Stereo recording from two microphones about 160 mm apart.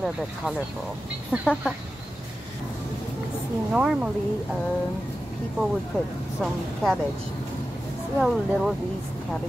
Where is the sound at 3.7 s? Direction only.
5° right (ahead or behind).